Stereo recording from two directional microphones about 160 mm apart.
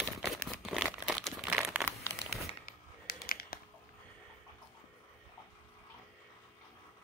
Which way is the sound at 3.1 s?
70° left (ahead or behind).